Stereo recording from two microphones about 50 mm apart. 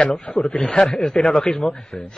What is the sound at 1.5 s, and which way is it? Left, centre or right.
Speech, centre.